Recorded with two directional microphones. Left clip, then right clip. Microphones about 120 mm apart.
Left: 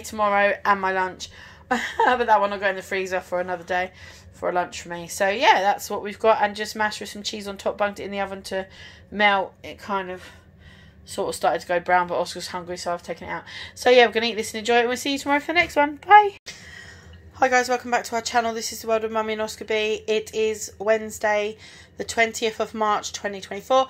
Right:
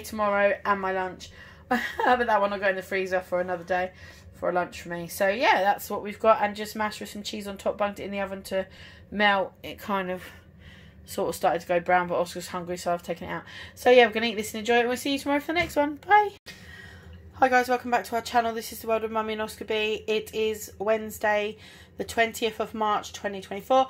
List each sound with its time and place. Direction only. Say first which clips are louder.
0.0 s speech: left 4 dB; 5° left (ahead or behind)
0.3 s speech: left 3 dB; 25° left (ahead or behind)
1.7 s a woman's voice: left 3 dB; 10° left (ahead or behind)
9.8 s a woman's voice: left 1 dB; 30° right (ahead or behind)
11.1 s a woman's voice: left 2 dB; 5° right (ahead or behind)
13.5 s a woman's voice: left 2 dB; 5° left (ahead or behind)